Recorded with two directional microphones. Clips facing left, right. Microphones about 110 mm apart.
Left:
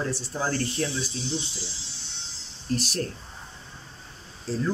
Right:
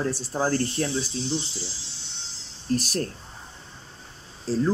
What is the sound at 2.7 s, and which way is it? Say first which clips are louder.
Speech: right 3 dB; 45° right (ahead or behind).